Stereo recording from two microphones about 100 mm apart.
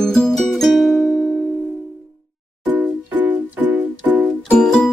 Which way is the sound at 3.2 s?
15° right (ahead or behind).